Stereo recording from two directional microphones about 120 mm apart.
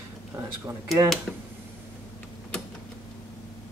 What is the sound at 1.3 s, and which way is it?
Speech, 5° left (ahead or behind).